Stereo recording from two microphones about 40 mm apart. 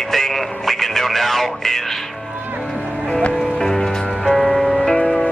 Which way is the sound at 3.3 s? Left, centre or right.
Centre.